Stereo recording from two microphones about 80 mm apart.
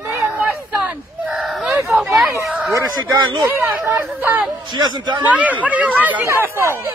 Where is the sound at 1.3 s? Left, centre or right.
Centre.